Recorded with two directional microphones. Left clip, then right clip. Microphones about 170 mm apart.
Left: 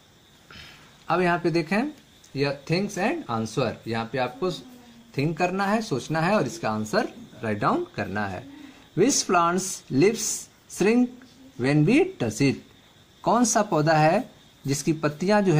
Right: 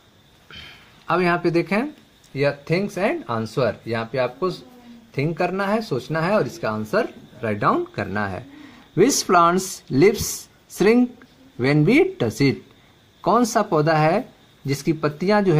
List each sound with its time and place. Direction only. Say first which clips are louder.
1.0 s speech: right 3 dB; 20° right (ahead or behind)